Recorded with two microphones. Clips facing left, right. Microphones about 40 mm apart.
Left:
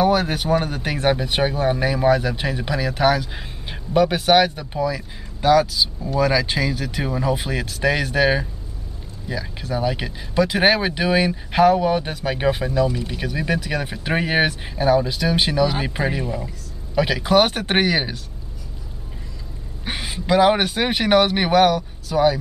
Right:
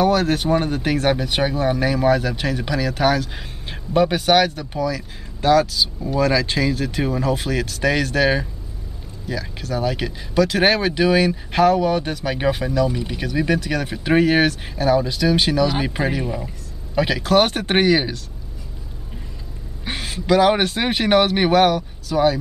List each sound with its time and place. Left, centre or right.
0.0 s a man's voice: centre
4.7 s speech: centre
5.4 s a man's voice: centre
19.8 s a man's voice: centre